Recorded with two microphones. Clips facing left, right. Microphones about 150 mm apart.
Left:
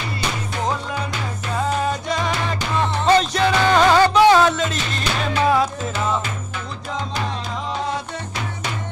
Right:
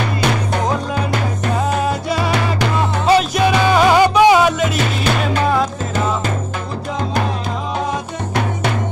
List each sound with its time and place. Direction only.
0.0 s music: 65° right (ahead or behind)
1.9 s music: 10° right (ahead or behind)